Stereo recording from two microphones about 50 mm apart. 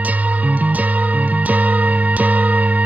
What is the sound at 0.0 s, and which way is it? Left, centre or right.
Music, right.